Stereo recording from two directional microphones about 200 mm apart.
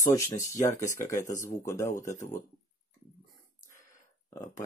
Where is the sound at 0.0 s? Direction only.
15° left (ahead or behind).